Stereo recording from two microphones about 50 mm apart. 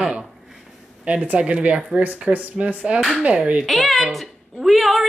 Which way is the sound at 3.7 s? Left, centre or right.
Centre.